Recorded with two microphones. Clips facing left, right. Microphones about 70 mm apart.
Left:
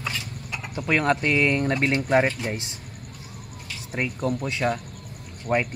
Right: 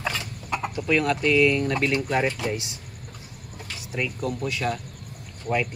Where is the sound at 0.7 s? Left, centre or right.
Left.